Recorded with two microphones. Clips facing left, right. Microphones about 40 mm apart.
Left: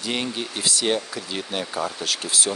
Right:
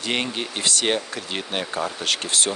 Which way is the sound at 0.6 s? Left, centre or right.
Right.